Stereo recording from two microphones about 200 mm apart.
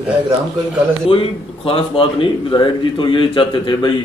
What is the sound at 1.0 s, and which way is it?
Speech, 30° left (ahead or behind).